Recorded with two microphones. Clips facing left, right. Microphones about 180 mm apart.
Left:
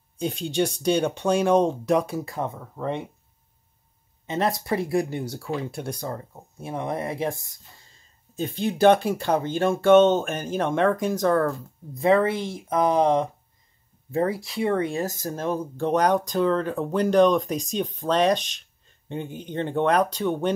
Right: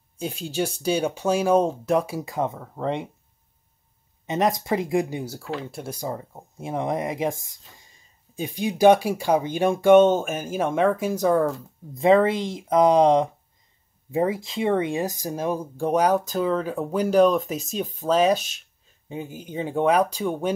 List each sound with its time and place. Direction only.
0.2 s speech: 5° right (ahead or behind)
4.3 s speech: 15° right (ahead or behind)